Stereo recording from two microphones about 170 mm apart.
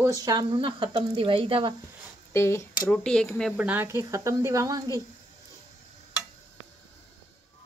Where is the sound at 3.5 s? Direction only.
10° right (ahead or behind).